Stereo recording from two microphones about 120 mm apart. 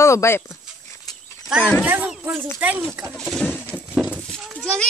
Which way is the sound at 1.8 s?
10° right (ahead or behind).